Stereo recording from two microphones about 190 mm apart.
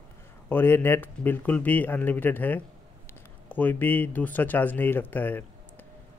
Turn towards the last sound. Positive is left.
turn(degrees=10)  # may be behind; listen again after turning